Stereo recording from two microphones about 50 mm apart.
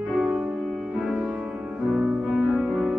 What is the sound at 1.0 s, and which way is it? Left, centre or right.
Music, centre.